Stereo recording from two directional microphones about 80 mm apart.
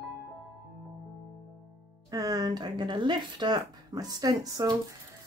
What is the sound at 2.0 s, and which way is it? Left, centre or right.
Speech, right.